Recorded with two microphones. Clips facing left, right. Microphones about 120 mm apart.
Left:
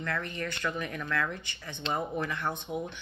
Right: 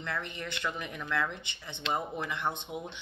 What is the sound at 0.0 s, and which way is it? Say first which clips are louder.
Speech: left 3 dB; 20° right (ahead or behind).